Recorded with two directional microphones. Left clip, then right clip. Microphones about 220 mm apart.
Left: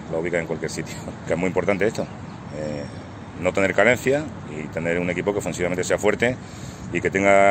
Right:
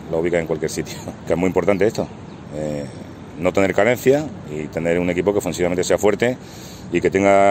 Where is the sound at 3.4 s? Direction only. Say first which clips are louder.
Right 2 dB; 55° right (ahead or behind).